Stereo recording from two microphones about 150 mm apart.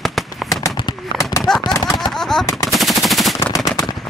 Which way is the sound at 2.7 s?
Centre (ahead or behind).